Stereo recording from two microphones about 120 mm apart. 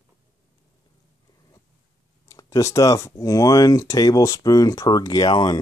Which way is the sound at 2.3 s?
25° left (ahead or behind).